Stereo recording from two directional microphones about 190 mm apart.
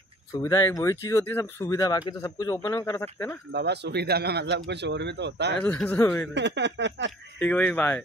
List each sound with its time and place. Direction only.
0.3 s speech: 15° left (ahead or behind)
3.5 s speech: 60° right (ahead or behind)
5.6 s speech: 5° left (ahead or behind)
6.3 s speech: 65° right (ahead or behind)
7.3 s speech: 10° left (ahead or behind)